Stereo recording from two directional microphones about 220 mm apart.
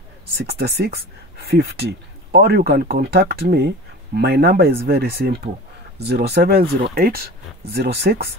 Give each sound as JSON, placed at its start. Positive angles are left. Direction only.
{"t": 0.3, "sound": "speech", "side_deg": -45}